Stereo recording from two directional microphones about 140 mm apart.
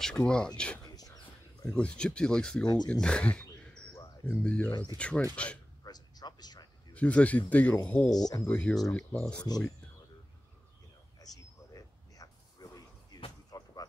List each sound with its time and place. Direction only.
0.0 s speech: 5° left (ahead or behind)
0.9 s a sound: 25° left (ahead or behind)
1.7 s speech: 5° left (ahead or behind)
2.6 s speech: 30° left (ahead or behind)
2.9 s speech: 5° left (ahead or behind)
4.6 s speech: 30° left (ahead or behind)
4.9 s speech: 10° left (ahead or behind)
5.9 s a sound: 30° left (ahead or behind)
6.9 s speech: 10° left (ahead or behind)
8.1 s speech: 25° left (ahead or behind)
8.5 s speech: 10° left (ahead or behind)
11.1 s a sound: 25° left (ahead or behind)